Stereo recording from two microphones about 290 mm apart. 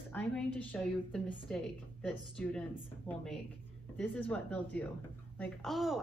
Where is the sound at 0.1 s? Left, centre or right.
Centre.